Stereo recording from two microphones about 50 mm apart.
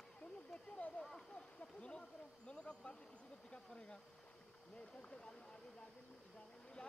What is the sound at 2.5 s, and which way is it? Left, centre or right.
Speech, centre.